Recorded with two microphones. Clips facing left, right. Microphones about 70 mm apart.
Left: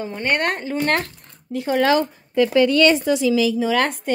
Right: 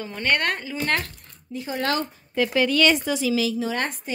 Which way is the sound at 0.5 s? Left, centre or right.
Left.